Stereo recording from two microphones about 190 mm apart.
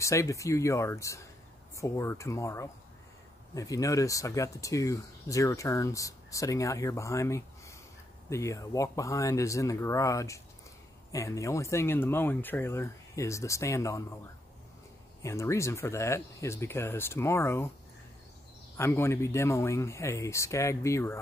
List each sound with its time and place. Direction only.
0.0 s speech: 15° left (ahead or behind)
15.2 s speech: 15° left (ahead or behind)
18.8 s speech: 15° left (ahead or behind)